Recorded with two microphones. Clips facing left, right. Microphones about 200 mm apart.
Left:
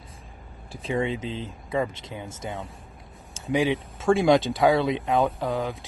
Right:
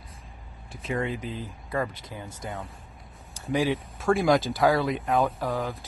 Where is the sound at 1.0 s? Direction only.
20° left (ahead or behind).